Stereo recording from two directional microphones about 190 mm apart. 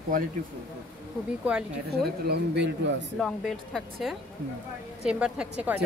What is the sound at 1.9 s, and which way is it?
Speech, 60° right (ahead or behind).